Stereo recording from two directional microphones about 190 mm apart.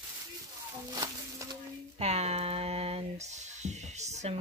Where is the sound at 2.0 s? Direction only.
35° right (ahead or behind).